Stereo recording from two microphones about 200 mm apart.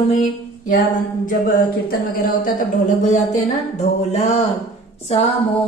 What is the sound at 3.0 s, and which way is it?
A woman's voice, 35° left (ahead or behind).